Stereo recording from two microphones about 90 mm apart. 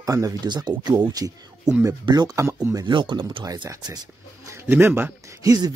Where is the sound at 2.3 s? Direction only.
35° right (ahead or behind).